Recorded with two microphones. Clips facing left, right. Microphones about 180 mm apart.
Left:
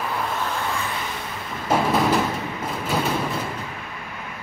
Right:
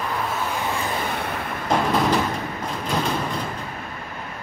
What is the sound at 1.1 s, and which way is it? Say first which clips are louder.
Vehicle: right 5 dB; 60° right (ahead or behind).